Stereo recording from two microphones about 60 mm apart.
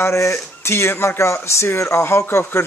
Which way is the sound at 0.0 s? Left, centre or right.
Left.